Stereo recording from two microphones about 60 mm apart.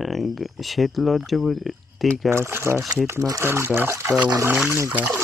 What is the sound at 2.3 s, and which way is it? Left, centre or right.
Speech, right.